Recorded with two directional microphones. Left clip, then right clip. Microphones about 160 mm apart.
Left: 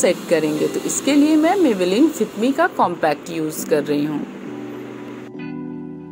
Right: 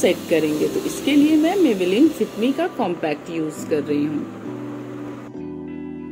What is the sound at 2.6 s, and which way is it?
Speech, 25° left (ahead or behind).